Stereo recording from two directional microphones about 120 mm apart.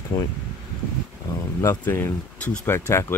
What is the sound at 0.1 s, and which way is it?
Speech, 45° left (ahead or behind).